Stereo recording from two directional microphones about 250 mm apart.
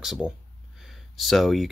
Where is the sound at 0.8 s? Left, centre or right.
Centre.